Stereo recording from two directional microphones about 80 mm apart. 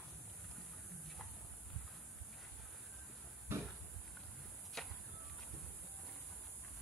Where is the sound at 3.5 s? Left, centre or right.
Right.